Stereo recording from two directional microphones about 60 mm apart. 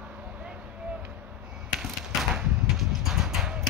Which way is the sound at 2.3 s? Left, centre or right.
Centre.